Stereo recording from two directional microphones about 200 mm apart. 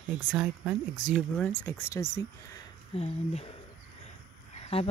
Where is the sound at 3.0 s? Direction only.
30° left (ahead or behind).